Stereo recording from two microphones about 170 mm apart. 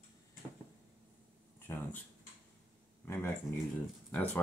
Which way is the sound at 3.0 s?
15° left (ahead or behind).